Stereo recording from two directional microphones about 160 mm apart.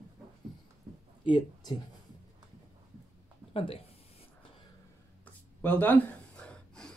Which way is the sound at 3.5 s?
35° left (ahead or behind).